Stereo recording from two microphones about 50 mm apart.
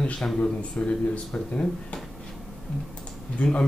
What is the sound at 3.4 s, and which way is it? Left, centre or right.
Speech, left.